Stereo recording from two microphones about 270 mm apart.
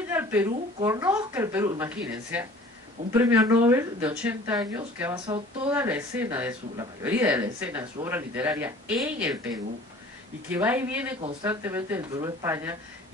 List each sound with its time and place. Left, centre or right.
0.1 s a sound: centre
0.7 s speech: centre
3.1 s speech: centre
5.2 s speech: centre
5.7 s speech: centre